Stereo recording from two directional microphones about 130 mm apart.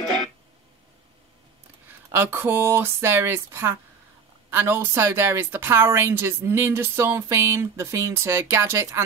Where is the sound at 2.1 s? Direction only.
15° right (ahead or behind).